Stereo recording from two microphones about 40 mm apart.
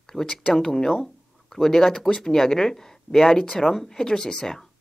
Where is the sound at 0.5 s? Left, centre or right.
Centre.